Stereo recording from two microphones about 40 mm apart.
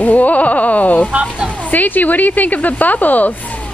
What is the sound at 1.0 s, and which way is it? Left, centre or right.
Speech, right.